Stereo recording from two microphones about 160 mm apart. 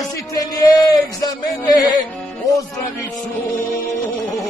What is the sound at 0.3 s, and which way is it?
Music, 25° left (ahead or behind).